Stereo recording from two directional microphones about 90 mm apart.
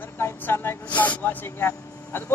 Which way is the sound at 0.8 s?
15° left (ahead or behind).